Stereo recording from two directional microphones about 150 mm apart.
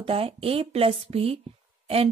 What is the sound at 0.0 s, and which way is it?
A woman's voice, 40° right (ahead or behind).